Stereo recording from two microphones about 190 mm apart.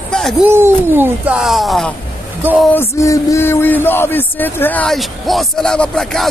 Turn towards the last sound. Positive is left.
turn(degrees=5)  # may be behind; listen again after turning